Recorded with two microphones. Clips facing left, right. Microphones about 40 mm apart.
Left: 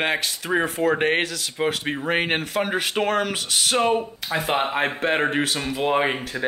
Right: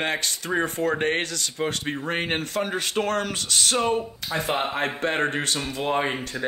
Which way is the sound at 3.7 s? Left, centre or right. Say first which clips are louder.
Left 4 dB; left.